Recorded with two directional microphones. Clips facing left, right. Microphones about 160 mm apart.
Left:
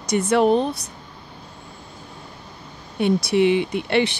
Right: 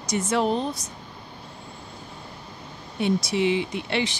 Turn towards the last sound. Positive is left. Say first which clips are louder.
# left 6 dB
turn(degrees=60)  # may be behind; listen again after turning